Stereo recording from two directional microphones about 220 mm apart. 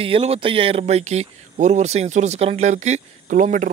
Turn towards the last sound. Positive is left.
turn(degrees=-35)  # may be behind; listen again after turning